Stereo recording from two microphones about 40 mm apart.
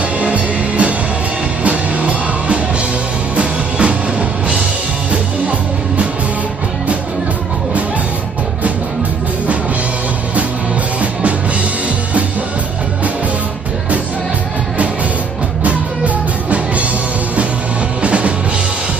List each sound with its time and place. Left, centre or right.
0.2 s music: right
15.6 s music: right
18.0 s music: right